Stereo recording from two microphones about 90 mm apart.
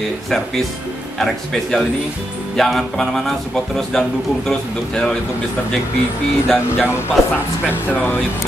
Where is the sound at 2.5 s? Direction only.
5° left (ahead or behind).